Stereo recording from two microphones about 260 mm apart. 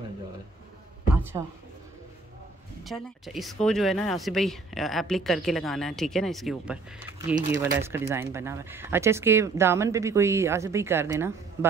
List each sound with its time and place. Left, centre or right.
1.4 s speech: centre
2.8 s speech: centre